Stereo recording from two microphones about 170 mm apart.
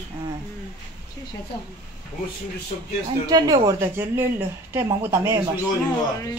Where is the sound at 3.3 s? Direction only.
25° right (ahead or behind).